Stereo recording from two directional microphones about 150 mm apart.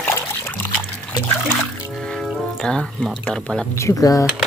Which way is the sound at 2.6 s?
5° left (ahead or behind).